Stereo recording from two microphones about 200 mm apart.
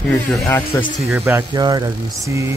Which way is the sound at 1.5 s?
20° right (ahead or behind).